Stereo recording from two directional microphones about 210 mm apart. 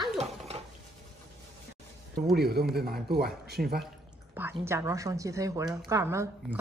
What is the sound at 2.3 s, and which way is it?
Speech, 50° right (ahead or behind).